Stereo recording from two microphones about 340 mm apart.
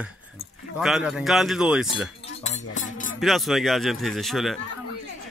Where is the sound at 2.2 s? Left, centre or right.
Centre.